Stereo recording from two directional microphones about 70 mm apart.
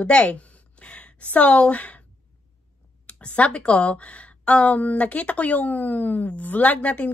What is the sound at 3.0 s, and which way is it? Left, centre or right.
A woman's voice, centre.